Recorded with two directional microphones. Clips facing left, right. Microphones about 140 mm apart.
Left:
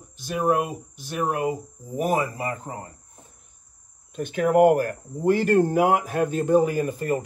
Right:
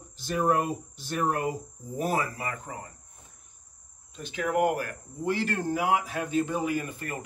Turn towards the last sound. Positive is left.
turn(degrees=35)  # may be behind; listen again after turning